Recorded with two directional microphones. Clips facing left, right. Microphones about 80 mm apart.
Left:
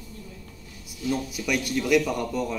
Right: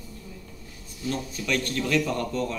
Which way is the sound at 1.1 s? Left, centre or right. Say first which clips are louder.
Left 2 dB; centre.